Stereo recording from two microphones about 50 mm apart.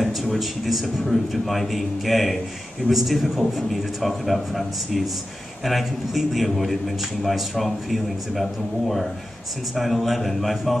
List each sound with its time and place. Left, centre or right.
0.0 s a man's voice: centre